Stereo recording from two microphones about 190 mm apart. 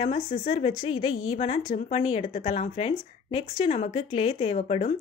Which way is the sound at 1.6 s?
40° left (ahead or behind).